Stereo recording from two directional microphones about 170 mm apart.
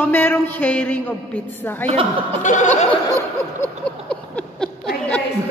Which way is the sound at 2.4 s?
45° left (ahead or behind).